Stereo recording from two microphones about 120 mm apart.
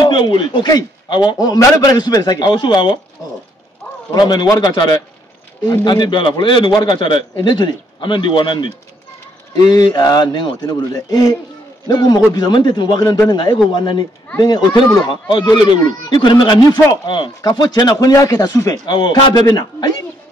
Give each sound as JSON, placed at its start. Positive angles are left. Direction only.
{"t": 0.0, "sound": "a man's voice", "side_deg": 40}
{"t": 4.1, "sound": "a man's voice", "side_deg": 40}
{"t": 5.7, "sound": "a man's voice", "side_deg": 35}
{"t": 9.7, "sound": "a man's voice", "side_deg": 35}
{"t": 18.9, "sound": "a man's voice", "side_deg": 40}